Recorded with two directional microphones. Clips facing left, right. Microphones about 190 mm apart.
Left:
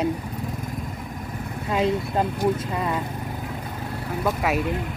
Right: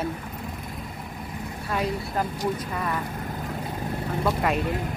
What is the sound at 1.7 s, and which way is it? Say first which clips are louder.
Speech: left 5 dB; 25° left (ahead or behind).